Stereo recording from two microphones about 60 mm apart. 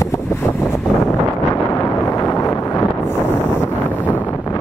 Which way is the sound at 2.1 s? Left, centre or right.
Left.